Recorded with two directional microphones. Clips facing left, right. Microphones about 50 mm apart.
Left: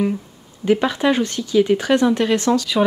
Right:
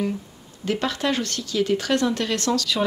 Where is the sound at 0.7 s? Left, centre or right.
Centre.